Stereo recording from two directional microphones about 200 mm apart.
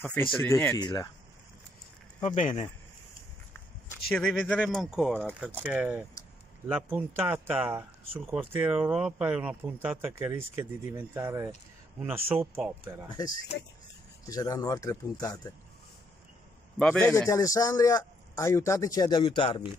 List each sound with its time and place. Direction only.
0.0 s a man's voice: 10° left (ahead or behind)
2.2 s speech: 30° left (ahead or behind)
4.1 s speech: 5° left (ahead or behind)
14.2 s a man's voice: 15° left (ahead or behind)
16.7 s a man's voice: 5° left (ahead or behind); by 19.6 s 25° left (ahead or behind)